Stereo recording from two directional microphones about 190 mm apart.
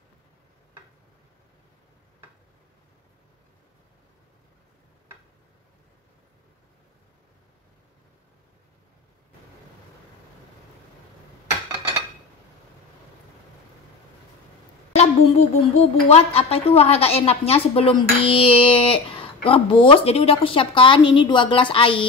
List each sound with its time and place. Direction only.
15.0 s music: 35° left (ahead or behind)
16.1 s a woman's voice: 30° left (ahead or behind)